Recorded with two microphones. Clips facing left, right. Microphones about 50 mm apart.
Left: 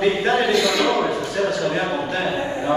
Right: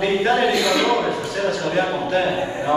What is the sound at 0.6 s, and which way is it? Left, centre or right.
Speech, centre.